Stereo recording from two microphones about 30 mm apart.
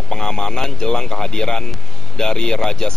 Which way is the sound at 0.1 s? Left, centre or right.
Left.